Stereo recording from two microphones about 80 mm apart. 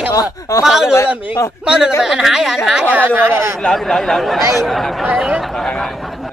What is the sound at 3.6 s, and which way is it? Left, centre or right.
Speech, centre.